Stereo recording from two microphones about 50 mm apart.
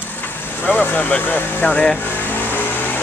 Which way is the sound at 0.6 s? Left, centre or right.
Left.